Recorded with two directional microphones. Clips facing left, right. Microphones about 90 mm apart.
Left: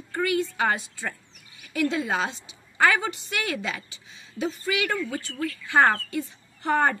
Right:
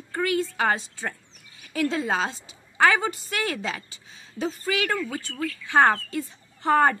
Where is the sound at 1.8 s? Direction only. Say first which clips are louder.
Right 1 dB; 35° right (ahead or behind).